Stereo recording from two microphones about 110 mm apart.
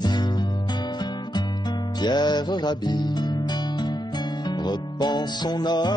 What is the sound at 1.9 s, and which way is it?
Music, 40° left (ahead or behind).